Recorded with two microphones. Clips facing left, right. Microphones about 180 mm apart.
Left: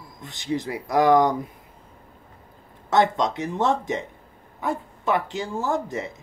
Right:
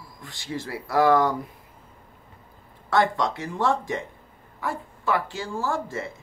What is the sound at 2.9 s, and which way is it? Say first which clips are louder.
Speech: left 2 dB; 20° left (ahead or behind).